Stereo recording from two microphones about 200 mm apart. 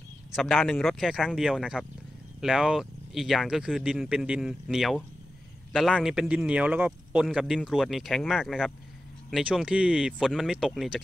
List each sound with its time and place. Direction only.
0.3 s a man's voice: centre (ahead or behind)